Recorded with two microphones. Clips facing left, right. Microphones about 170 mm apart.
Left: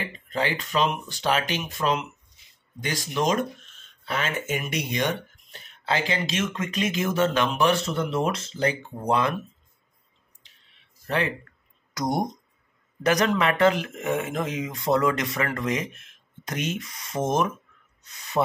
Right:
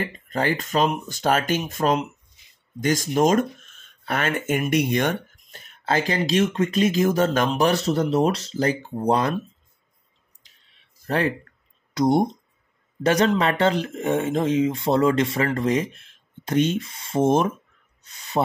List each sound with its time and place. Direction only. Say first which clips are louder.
0.0 s speech: right 3 dB; 45° right (ahead or behind)
11.1 s speech: right 3 dB; 40° right (ahead or behind)
11.9 s speech: right 7 dB; 25° right (ahead or behind)